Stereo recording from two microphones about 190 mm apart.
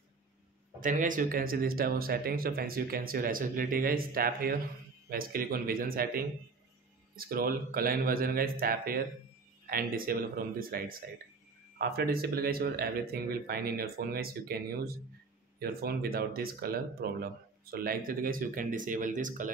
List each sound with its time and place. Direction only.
0.7 s speech: 45° right (ahead or behind)
15.6 s speech: 55° right (ahead or behind)